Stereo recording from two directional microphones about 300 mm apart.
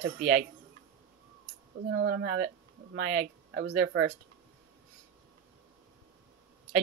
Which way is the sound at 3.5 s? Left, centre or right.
Right.